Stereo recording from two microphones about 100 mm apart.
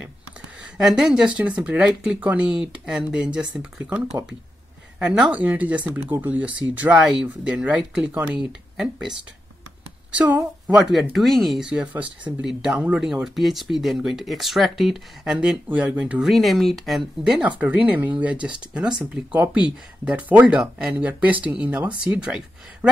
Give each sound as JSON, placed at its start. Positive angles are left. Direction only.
{"t": 0.8, "sound": "speech", "side_deg": -5}
{"t": 4.9, "sound": "a sound", "side_deg": -5}
{"t": 5.3, "sound": "speech", "side_deg": -15}
{"t": 7.0, "sound": "speech", "side_deg": -5}
{"t": 10.1, "sound": "speech", "side_deg": -15}
{"t": 10.9, "sound": "speech", "side_deg": 0}
{"t": 11.7, "sound": "speech", "side_deg": -15}
{"t": 16.3, "sound": "speech", "side_deg": 0}
{"t": 17.4, "sound": "speech", "side_deg": -15}